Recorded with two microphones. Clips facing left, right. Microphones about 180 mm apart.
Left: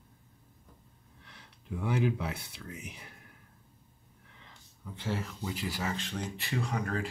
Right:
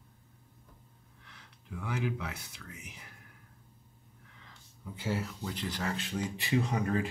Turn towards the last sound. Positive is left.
turn(degrees=-20)  # may be behind; listen again after turning